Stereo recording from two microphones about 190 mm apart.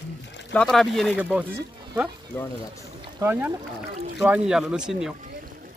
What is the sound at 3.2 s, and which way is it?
Speech, 10° right (ahead or behind).